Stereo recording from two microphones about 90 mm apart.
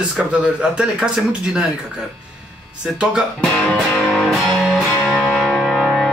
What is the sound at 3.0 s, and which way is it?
Speech, 10° right (ahead or behind).